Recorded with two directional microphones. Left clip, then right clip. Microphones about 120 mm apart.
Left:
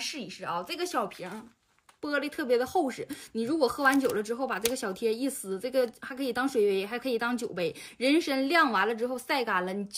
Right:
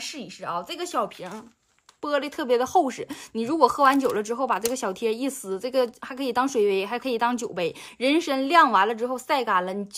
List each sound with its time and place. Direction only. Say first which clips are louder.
0.0 s speech: right 2 dB; 30° right (ahead or behind)
2.0 s a woman's voice: right 5 dB; 50° right (ahead or behind)